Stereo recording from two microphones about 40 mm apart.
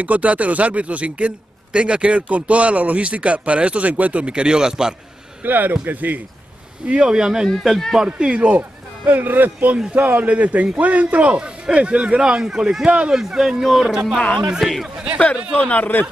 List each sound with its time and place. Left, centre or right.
0.0 s a man's voice: right; by 4.9 s centre
5.4 s speech: right
7.1 s speech: centre
7.4 s speech: centre
8.0 s speech: right
8.4 s speech: right
10.2 s a man's voice: right
12.2 s speech: centre
13.1 s speech: centre
13.6 s speech: centre
15.5 s speech: left